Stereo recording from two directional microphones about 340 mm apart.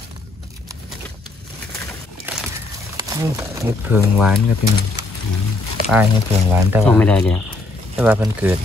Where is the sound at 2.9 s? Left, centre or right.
Centre.